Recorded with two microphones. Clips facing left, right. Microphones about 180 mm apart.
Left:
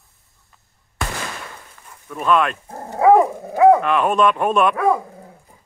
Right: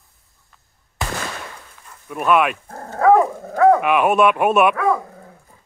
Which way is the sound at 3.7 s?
10° right (ahead or behind).